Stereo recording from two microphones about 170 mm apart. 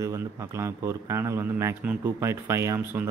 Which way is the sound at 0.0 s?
15° right (ahead or behind).